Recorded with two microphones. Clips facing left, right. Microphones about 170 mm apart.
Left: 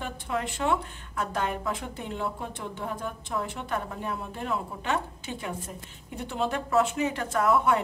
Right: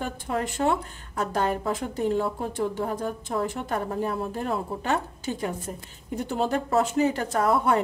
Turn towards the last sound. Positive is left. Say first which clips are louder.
# right 1 dB
turn(degrees=-35)  # may be behind; listen again after turning